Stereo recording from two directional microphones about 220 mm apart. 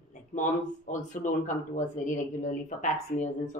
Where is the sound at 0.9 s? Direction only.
35° left (ahead or behind).